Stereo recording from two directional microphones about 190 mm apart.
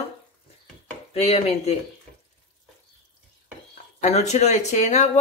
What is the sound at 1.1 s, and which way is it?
Speech, 35° left (ahead or behind).